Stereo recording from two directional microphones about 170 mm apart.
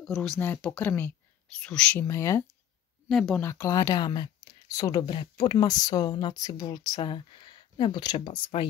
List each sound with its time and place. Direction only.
0.0 s speech: 5° left (ahead or behind)
3.1 s speech: centre (ahead or behind)
3.4 s speech: 15° left (ahead or behind)